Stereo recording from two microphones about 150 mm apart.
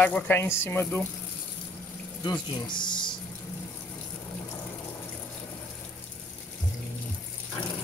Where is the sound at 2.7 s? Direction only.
30° left (ahead or behind).